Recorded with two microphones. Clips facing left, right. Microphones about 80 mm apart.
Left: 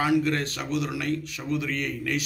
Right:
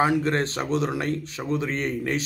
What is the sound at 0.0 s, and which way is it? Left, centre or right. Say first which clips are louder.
A man's voice: right 2 dB; right.